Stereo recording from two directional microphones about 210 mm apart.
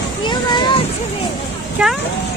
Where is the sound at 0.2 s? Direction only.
20° left (ahead or behind).